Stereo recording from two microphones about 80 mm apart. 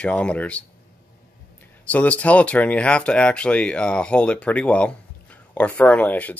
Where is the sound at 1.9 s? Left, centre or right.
Centre.